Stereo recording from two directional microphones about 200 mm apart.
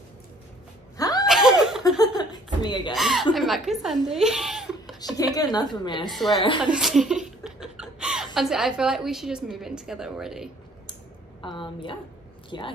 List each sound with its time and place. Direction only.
0.9 s a sound: 20° left (ahead or behind)
1.2 s snicker: centre (ahead or behind)
2.0 s chuckle: 20° left (ahead or behind)
2.9 s a sound: centre (ahead or behind)
3.3 s speech: centre (ahead or behind)
5.0 s a woman's voice: 20° left (ahead or behind)
6.0 s a woman's voice: centre (ahead or behind)
11.4 s a woman's voice: 25° left (ahead or behind)